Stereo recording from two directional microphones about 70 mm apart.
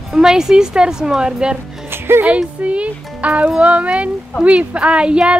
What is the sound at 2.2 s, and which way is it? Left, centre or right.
Speech, centre.